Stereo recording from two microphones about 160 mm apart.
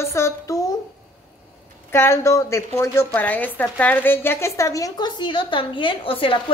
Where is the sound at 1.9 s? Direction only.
15° left (ahead or behind).